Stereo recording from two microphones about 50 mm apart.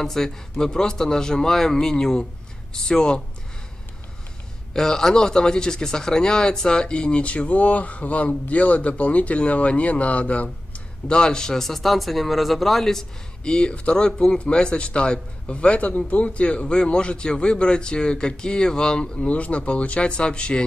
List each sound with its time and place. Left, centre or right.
0.0 s a man's voice: centre
4.7 s speech: centre; by 10.5 s left
11.1 s a man's voice: centre
13.4 s speech: centre
19.2 s speech: left